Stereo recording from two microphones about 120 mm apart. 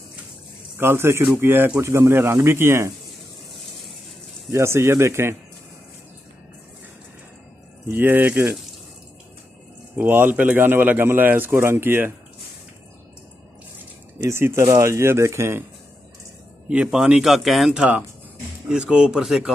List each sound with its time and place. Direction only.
0.7 s speech: 20° right (ahead or behind)
4.5 s speech: 20° right (ahead or behind)
7.9 s speech: 15° right (ahead or behind)
9.9 s speech: 15° right (ahead or behind)
14.2 s speech: 20° right (ahead or behind)
16.6 s a man's voice: 10° right (ahead or behind)